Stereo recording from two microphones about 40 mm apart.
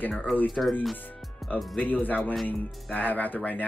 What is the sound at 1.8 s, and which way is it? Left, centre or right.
Speech, left.